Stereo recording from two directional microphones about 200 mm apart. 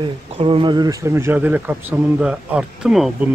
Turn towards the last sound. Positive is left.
turn(degrees=-5)  # may be behind; listen again after turning